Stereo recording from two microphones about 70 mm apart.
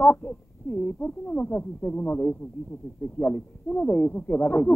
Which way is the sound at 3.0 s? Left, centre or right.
Left.